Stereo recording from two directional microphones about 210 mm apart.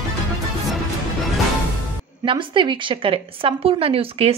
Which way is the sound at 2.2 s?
25° right (ahead or behind).